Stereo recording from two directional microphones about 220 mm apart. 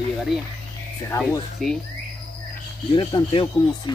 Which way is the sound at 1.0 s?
15° left (ahead or behind).